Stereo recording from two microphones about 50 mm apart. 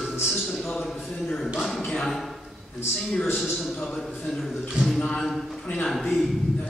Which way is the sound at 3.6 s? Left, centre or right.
Centre.